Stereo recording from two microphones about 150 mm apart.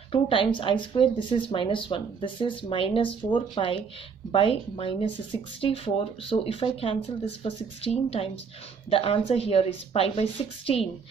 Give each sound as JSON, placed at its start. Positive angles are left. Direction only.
{"t": 0.1, "sound": "speech", "side_deg": 35}
{"t": 8.2, "sound": "speech", "side_deg": 40}